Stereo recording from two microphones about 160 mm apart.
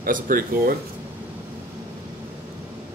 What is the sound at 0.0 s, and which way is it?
Speech, 60° right (ahead or behind).